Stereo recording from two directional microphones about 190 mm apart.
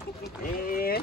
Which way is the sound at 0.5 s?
50° left (ahead or behind).